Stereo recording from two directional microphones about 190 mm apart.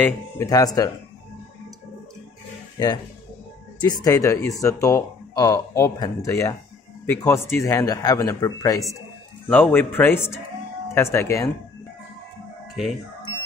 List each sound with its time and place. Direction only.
0.0 s speech: 15° left (ahead or behind)
4.0 s speech: 15° left (ahead or behind)
12.8 s speech: centre (ahead or behind)